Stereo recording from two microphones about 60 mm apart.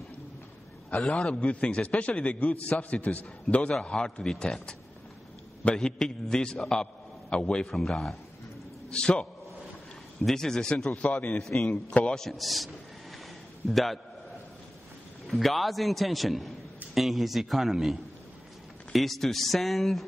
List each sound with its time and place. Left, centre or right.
1.0 s a man's voice: centre
1.4 s a man's voice: left
5.8 s a man's voice: centre
7.6 s a man's voice: centre
8.9 s a man's voice: centre
11.0 s a man's voice: left
11.4 s a man's voice: centre
15.2 s a man's voice: centre